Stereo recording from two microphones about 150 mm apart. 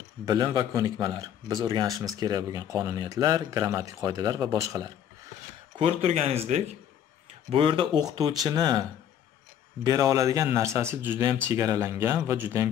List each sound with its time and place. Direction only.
0.2 s speech: 25° right (ahead or behind)
5.8 s speech: 40° right (ahead or behind); by 8.8 s 25° right (ahead or behind)
9.8 s a man's voice: 25° right (ahead or behind)